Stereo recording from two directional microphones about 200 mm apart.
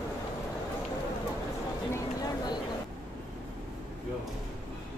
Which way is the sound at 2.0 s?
20° left (ahead or behind).